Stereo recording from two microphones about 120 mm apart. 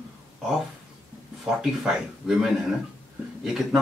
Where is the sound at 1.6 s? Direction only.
5° right (ahead or behind).